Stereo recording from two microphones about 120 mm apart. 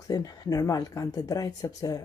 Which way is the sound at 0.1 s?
30° left (ahead or behind).